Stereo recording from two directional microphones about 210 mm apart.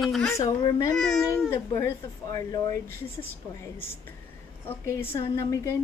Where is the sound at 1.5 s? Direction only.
15° left (ahead or behind).